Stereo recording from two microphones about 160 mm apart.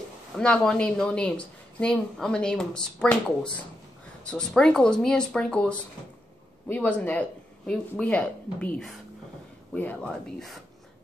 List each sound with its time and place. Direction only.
0.4 s speech: 5° left (ahead or behind)